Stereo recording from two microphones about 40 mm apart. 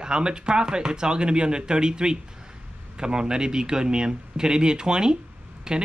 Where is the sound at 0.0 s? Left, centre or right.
Right.